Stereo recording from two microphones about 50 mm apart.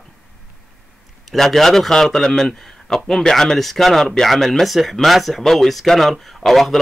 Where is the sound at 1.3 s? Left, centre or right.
Centre.